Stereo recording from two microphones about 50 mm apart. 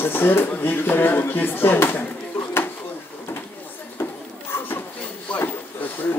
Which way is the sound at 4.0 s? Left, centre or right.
Left.